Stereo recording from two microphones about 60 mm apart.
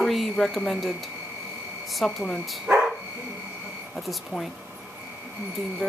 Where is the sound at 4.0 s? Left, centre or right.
Centre.